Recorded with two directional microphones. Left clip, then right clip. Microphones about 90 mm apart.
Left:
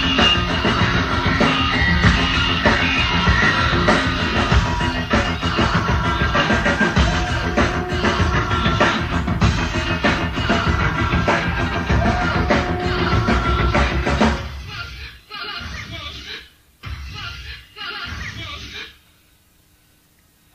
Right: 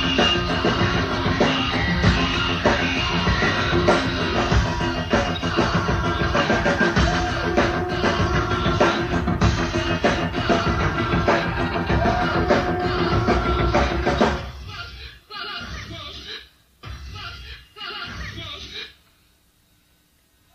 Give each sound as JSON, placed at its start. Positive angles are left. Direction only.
{"t": 0.0, "sound": "music", "side_deg": -35}
{"t": 17.7, "sound": "music", "side_deg": -35}